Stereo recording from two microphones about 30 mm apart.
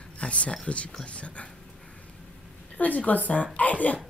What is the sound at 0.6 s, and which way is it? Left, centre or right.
Speech, left.